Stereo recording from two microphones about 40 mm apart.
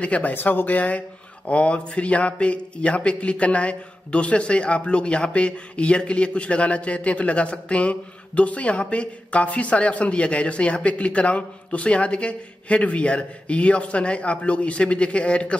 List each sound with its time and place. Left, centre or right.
0.2 s a man's voice: left